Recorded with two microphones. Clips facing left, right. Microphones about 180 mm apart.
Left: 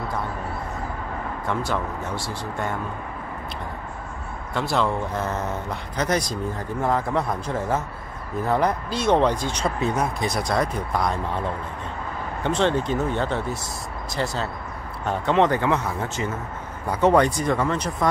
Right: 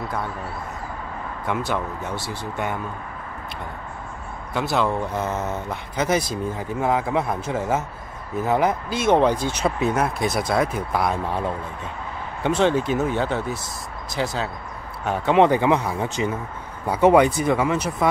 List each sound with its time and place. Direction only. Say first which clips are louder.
4.6 s speech: right 1 dB; centre (ahead or behind)
4.8 s speech: right 1 dB; 15° right (ahead or behind)
5.9 s speech: right 2 dB; 5° right (ahead or behind)
12.4 s speech: right 2 dB; 10° right (ahead or behind)